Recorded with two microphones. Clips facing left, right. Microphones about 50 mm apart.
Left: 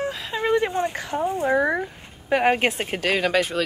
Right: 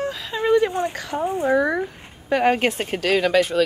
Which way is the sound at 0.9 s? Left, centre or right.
Left.